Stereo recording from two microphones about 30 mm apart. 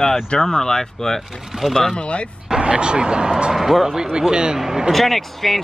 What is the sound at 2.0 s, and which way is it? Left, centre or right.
Speech, left.